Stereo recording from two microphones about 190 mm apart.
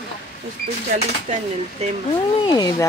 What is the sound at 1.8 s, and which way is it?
Speech, 35° right (ahead or behind).